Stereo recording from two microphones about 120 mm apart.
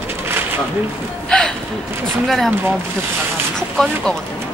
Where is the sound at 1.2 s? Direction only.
5° left (ahead or behind).